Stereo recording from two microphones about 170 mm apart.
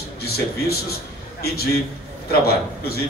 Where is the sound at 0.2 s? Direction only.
65° left (ahead or behind).